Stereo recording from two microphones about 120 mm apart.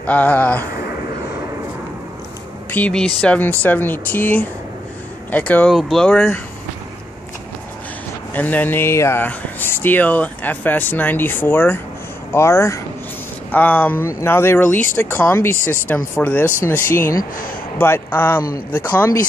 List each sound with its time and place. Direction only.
0.0 s speech: 15° left (ahead or behind)
2.7 s speech: 10° left (ahead or behind)
5.7 s speech: centre (ahead or behind)
8.4 s speech: 15° left (ahead or behind)